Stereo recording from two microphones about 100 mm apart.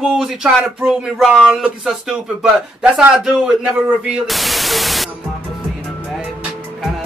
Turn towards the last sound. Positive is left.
turn(degrees=0)  # may be behind; listen again after turning